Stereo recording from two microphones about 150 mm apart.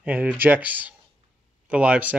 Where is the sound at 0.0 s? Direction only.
10° right (ahead or behind).